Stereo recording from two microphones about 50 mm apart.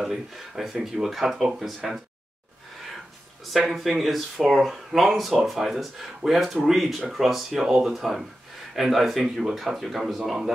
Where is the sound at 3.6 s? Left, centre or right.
Centre.